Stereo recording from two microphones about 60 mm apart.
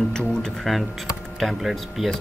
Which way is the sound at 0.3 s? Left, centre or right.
Centre.